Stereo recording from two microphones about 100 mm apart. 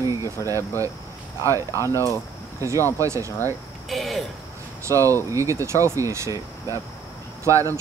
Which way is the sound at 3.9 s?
Centre (ahead or behind).